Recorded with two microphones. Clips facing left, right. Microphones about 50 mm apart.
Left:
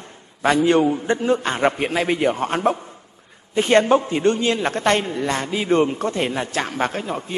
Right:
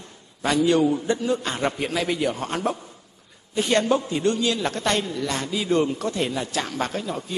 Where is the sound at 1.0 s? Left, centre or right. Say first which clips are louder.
Left 4 dB; left.